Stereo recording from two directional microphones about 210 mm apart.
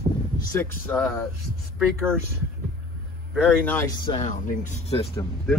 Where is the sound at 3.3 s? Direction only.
Centre (ahead or behind).